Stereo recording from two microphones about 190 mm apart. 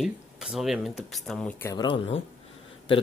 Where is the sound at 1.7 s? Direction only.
25° left (ahead or behind).